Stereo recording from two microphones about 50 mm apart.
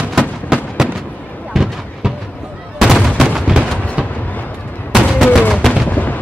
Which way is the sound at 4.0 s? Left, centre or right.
Left.